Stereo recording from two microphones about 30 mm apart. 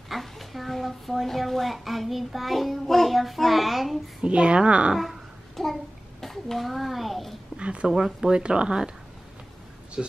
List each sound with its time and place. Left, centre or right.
0.1 s speech: centre
4.2 s a woman's voice: right
5.6 s a child's voice: centre
7.5 s speech: right
7.9 s speech: right
10.0 s speech: right